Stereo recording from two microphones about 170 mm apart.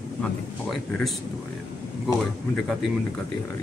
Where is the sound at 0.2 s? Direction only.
5° left (ahead or behind).